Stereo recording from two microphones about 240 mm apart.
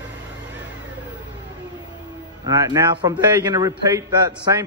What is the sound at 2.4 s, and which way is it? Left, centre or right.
A man's voice, centre.